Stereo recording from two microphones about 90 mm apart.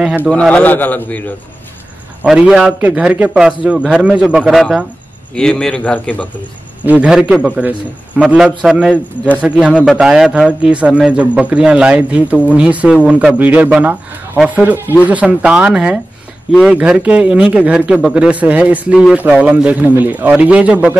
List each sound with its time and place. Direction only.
0.3 s a man's voice: 10° left (ahead or behind)
2.2 s a man's voice: 5° right (ahead or behind)
2.8 s speech: 15° right (ahead or behind)
4.5 s a man's voice: centre (ahead or behind); by 6.2 s 15° left (ahead or behind)
6.8 s a man's voice: 15° right (ahead or behind)